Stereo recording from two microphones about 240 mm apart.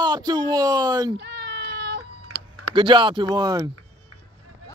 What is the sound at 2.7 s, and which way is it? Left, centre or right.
Speech, centre.